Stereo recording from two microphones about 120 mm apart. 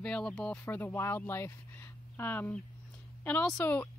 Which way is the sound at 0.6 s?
20° left (ahead or behind).